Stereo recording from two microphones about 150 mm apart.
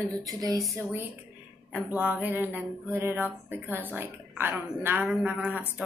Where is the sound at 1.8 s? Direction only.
10° right (ahead or behind).